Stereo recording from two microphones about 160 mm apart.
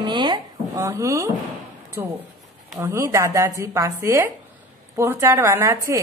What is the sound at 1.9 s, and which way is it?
A woman's voice, 15° right (ahead or behind).